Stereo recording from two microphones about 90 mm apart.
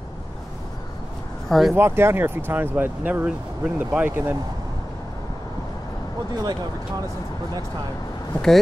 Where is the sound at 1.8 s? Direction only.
25° right (ahead or behind).